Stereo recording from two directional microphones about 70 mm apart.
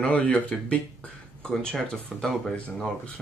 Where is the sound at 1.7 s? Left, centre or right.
Centre.